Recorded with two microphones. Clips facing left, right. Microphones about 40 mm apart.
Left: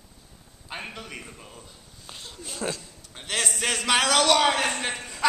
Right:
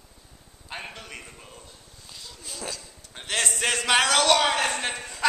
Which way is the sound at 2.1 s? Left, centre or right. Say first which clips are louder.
Left 3 dB; left.